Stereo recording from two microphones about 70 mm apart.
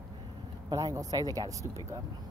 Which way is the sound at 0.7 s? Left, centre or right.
Right.